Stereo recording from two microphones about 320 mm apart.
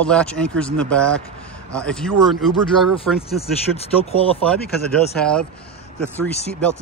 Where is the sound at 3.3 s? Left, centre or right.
Centre.